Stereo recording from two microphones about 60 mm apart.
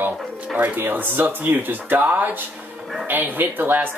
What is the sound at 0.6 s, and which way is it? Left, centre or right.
Speech, right.